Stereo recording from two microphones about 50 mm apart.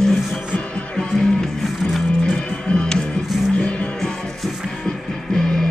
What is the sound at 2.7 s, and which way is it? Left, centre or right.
Music, centre.